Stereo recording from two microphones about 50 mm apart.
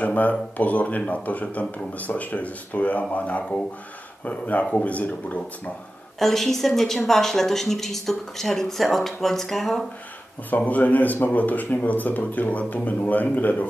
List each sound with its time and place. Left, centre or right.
0.0 s speech: left
6.1 s speech: centre
10.5 s speech: left